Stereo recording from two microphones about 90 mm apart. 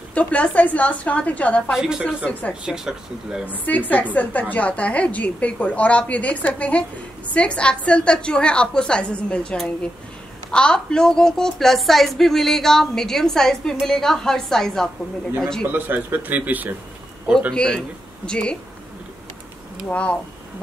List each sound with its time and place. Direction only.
0.1 s a woman's voice: 15° left (ahead or behind)
1.7 s speech: 5° right (ahead or behind)
3.6 s a woman's voice: 20° left (ahead or behind)
15.7 s speech: 20° right (ahead or behind)
17.5 s a woman's voice: 5° left (ahead or behind)
19.9 s a woman's voice: 15° left (ahead or behind)